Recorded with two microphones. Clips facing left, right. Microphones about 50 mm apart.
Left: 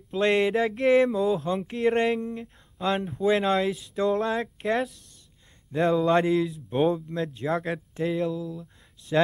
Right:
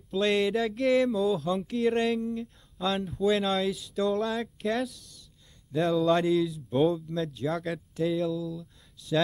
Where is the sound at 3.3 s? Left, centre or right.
Left.